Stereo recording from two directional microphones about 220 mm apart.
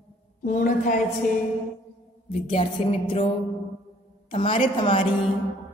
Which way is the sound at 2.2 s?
25° left (ahead or behind).